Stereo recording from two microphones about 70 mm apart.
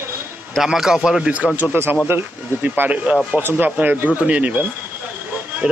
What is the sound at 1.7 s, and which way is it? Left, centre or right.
Speech, right.